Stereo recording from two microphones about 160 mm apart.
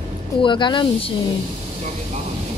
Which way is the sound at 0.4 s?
30° left (ahead or behind).